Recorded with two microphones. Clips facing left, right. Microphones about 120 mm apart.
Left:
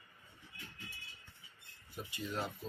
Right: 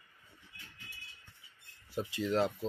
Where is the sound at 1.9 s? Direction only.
90° right.